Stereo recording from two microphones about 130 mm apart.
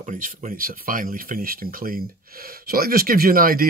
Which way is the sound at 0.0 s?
80° right.